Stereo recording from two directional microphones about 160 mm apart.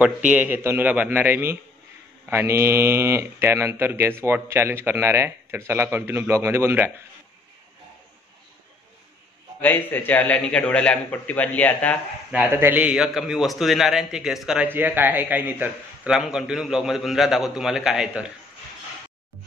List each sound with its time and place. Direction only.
0.0 s speech: 10° right (ahead or behind)
9.6 s a man's voice: 10° left (ahead or behind)
12.3 s a man's voice: 10° right (ahead or behind)